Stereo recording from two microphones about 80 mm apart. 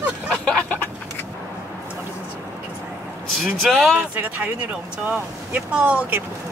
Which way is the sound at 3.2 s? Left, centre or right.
Centre.